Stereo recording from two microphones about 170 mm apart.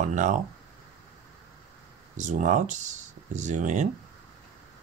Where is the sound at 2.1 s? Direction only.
45° right (ahead or behind).